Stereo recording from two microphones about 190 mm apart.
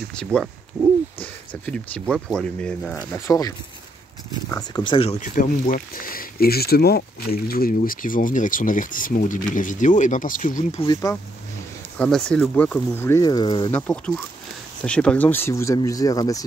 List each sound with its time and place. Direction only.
0.1 s speech: 5° left (ahead or behind)
3.3 s speech: 20° left (ahead or behind); by 10.8 s 45° left (ahead or behind)
10.8 s speech: 20° left (ahead or behind)
12.0 s speech: 5° left (ahead or behind); by 13.7 s 20° left (ahead or behind)
13.7 s speech: 5° left (ahead or behind)